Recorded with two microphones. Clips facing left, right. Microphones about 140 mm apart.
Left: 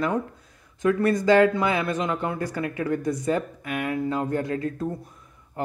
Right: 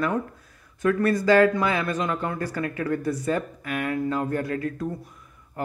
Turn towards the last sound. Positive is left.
turn(degrees=30)  # may be behind; listen again after turning